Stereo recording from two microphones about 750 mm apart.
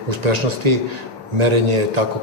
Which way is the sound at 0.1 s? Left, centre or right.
Right.